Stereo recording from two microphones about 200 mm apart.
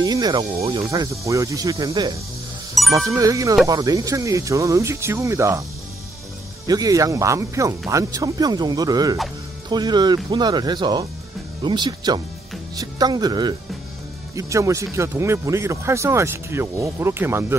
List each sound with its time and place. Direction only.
0.0 s music: 20° right (ahead or behind)
0.7 s speech: 15° right (ahead or behind)
2.8 s music: centre (ahead or behind)
3.1 s speech: 15° right (ahead or behind)
6.7 s speech: 15° right (ahead or behind)